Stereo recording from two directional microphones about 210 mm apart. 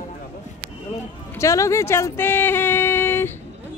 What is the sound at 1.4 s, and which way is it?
Speech, 15° left (ahead or behind).